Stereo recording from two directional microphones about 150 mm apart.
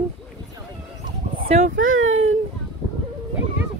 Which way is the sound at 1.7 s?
55° right (ahead or behind).